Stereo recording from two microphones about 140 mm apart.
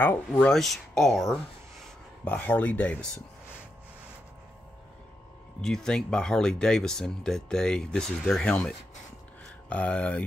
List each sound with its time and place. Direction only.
0.0 s speech: 15° left (ahead or behind)
0.5 s speech: centre (ahead or behind)
2.2 s speech: 10° left (ahead or behind)
5.6 s speech: 5° left (ahead or behind)